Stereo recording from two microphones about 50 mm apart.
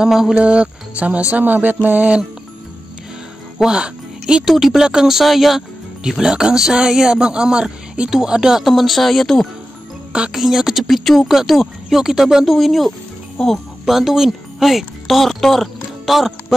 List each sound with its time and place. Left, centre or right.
0.0 s speech: centre
0.3 s speech: right
1.4 s music: right
3.6 s speech: centre
4.5 s speech: centre
8.6 s speech: centre
10.3 s speech: centre